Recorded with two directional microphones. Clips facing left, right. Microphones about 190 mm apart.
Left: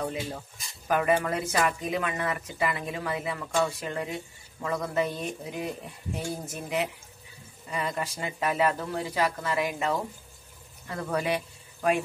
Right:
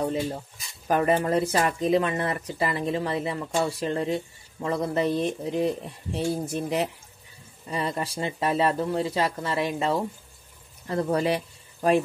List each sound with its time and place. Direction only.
0.8 s speech: 35° right (ahead or behind)